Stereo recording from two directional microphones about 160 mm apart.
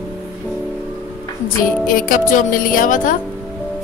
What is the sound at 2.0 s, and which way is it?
Speech, 55° left (ahead or behind).